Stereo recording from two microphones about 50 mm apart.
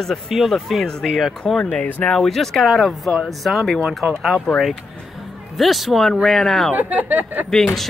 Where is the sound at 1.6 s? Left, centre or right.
Left.